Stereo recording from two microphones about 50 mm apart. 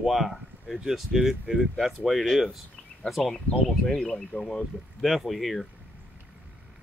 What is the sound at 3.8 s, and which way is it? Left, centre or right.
Speech, centre.